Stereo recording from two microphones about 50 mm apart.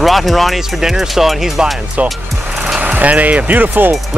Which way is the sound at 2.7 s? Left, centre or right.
Right.